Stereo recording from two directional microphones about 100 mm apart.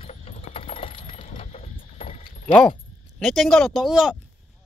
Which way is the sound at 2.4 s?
10° left (ahead or behind).